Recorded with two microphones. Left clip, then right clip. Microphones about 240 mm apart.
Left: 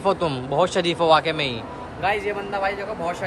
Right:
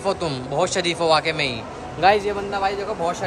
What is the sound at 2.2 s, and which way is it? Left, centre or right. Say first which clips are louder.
Speech: right 2 dB; centre.